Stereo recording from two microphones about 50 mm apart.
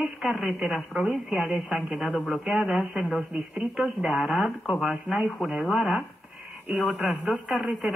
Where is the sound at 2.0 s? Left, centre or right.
Centre.